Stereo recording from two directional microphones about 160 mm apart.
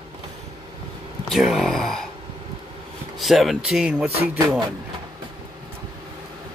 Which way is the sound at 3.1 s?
Centre (ahead or behind).